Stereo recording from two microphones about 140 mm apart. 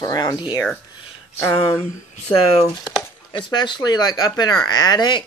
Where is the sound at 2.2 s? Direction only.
45° left (ahead or behind).